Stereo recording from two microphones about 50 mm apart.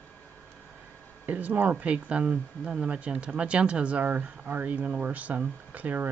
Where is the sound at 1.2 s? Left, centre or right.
Right.